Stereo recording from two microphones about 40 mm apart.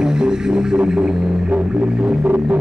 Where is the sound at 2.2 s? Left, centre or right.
Right.